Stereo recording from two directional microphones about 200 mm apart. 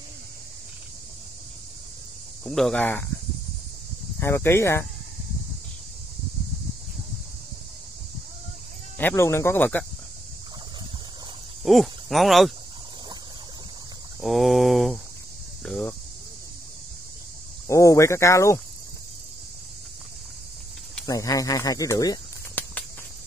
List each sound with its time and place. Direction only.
2.4 s speech: centre (ahead or behind)
4.2 s speech: 10° left (ahead or behind)
8.9 s speech: 10° left (ahead or behind)
11.6 s speech: centre (ahead or behind)
14.2 s speech: centre (ahead or behind)
15.6 s cricket: 5° left (ahead or behind)
17.6 s speech: 15° left (ahead or behind)
21.0 s speech: 15° left (ahead or behind)